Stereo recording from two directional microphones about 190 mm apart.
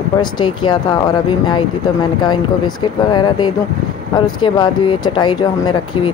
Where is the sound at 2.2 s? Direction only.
20° left (ahead or behind).